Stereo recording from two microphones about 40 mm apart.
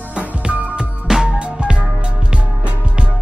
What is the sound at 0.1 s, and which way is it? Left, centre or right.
Music, right.